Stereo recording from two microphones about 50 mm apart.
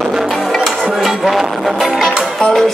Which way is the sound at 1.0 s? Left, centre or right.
Centre.